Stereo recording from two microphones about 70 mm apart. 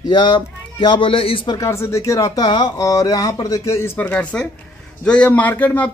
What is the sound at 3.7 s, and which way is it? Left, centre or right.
Speech, left.